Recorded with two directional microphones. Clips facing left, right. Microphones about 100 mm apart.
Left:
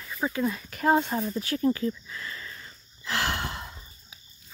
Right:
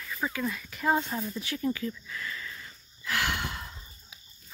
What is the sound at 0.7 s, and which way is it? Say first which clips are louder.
Speech: left 4 dB; 55° left (ahead or behind).